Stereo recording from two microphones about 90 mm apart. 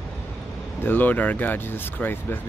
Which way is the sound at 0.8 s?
20° left (ahead or behind).